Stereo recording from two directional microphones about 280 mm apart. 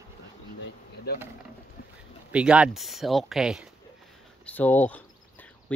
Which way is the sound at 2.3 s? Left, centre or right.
Centre.